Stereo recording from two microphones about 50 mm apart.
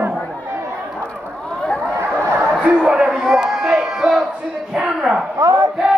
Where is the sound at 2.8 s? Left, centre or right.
Centre.